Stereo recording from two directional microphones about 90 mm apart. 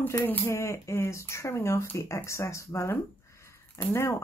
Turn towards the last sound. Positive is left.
turn(degrees=30)  # may be behind; listen again after turning